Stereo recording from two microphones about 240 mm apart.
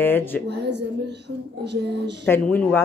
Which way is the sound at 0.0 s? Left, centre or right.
Centre.